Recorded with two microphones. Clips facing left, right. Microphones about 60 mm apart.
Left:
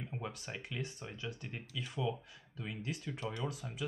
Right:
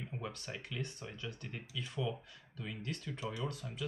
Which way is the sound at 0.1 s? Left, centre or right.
Centre.